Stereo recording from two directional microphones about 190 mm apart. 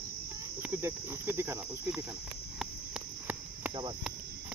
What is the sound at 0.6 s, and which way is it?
Cricket, 15° right (ahead or behind).